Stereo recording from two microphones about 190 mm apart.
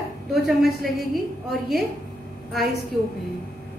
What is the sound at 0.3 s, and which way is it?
A woman's voice, centre (ahead or behind).